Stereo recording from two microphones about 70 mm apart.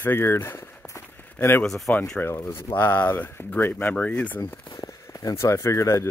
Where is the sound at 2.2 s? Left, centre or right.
Left.